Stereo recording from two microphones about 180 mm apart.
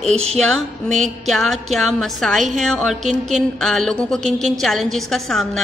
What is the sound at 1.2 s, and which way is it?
A woman's voice, centre (ahead or behind).